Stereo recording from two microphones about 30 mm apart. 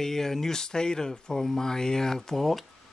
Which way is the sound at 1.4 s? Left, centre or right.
Centre.